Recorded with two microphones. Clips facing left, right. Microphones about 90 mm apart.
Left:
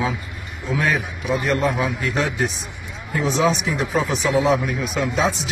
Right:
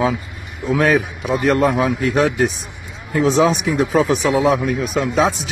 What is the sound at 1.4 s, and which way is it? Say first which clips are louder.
Speech: right 6 dB; 90° right.